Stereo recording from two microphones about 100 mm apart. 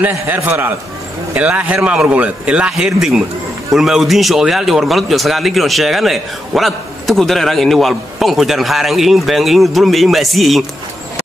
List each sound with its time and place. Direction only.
0.0 s a man's voice: 20° right (ahead or behind); by 10.6 s centre (ahead or behind)